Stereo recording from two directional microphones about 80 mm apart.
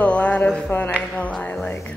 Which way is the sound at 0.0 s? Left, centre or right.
Centre.